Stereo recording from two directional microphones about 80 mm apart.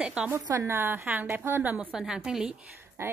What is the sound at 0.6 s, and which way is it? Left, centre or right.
A woman's voice, right.